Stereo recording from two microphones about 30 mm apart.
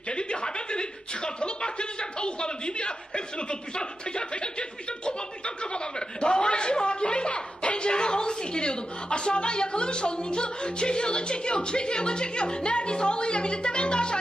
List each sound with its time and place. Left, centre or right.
0.1 s chuckle: left